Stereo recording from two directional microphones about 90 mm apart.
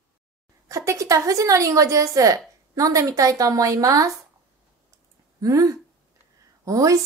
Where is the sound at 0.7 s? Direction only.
35° right (ahead or behind).